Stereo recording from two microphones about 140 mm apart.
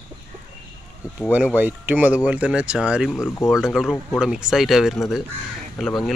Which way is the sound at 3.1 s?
20° left (ahead or behind).